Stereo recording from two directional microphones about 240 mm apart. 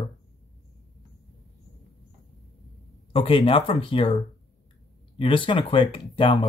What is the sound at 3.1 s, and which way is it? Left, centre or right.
Speech, left.